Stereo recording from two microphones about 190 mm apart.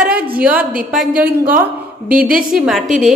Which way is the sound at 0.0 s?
5° right (ahead or behind).